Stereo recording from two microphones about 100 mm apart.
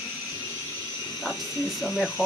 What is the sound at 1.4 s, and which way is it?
Hiss, 30° right (ahead or behind).